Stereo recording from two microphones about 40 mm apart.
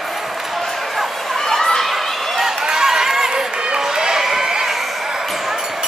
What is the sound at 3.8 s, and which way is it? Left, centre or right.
Run, centre.